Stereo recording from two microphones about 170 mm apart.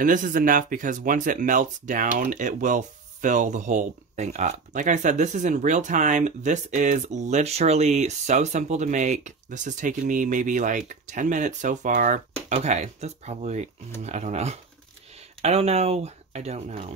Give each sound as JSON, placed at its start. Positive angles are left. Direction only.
{"t": 0.0, "sound": "speech", "side_deg": -50}